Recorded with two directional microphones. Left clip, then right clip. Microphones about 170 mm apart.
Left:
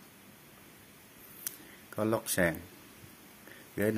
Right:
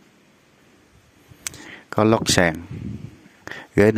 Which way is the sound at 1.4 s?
60° right (ahead or behind).